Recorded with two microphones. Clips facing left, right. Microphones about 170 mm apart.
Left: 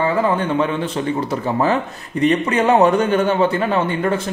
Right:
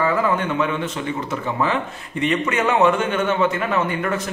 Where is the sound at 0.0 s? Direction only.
30° left (ahead or behind).